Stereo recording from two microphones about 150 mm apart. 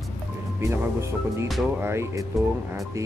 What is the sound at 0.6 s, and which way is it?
Speech, 20° right (ahead or behind).